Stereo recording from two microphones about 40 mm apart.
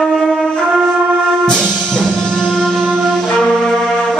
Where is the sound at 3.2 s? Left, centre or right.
Centre.